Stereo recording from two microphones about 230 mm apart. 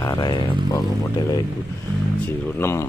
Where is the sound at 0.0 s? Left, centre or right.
Centre.